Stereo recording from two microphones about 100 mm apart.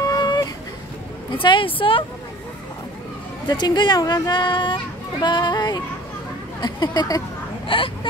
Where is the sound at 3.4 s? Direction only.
45° left (ahead or behind).